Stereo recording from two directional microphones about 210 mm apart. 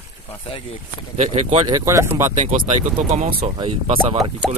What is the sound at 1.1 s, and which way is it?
Speech, 30° right (ahead or behind).